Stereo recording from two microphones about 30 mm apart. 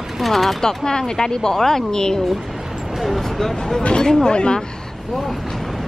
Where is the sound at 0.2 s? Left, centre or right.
Centre.